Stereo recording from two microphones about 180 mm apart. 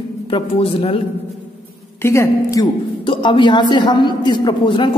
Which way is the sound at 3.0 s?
25° left (ahead or behind).